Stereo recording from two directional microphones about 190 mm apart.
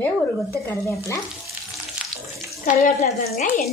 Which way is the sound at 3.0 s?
40° left (ahead or behind).